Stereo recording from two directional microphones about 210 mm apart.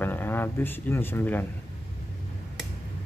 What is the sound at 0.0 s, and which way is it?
Speech, 10° left (ahead or behind).